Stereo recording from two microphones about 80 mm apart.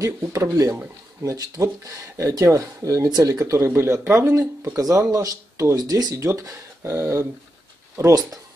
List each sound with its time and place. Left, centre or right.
0.2 s speech: right
6.1 s speech: right